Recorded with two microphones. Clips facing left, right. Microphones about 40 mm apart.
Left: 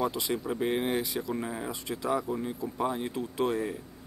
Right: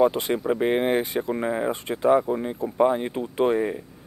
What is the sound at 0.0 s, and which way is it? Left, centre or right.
Speech, right.